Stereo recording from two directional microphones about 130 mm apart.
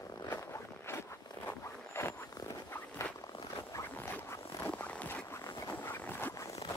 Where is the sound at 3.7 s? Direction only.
20° left (ahead or behind).